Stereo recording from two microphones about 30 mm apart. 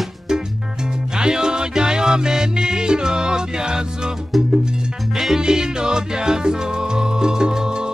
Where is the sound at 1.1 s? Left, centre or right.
Right.